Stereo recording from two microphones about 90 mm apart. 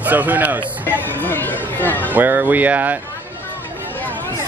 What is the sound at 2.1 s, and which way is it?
Speech, 20° right (ahead or behind).